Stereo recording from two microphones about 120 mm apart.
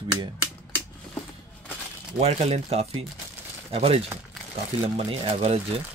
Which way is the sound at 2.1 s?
60° right (ahead or behind).